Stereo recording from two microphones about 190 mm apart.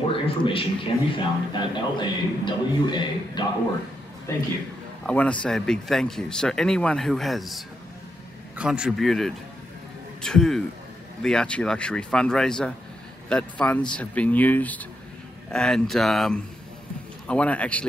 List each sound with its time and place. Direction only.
0.1 s a man's voice: 30° left (ahead or behind)
5.0 s speech: 5° left (ahead or behind)